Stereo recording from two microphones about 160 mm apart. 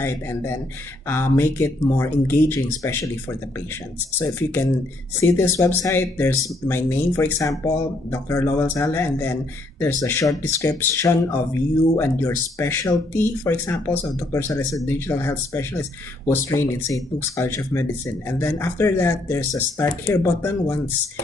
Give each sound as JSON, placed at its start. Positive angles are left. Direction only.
{"t": 0.0, "sound": "speech", "side_deg": 15}